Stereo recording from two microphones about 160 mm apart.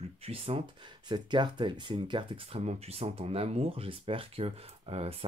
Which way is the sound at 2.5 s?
40° right (ahead or behind).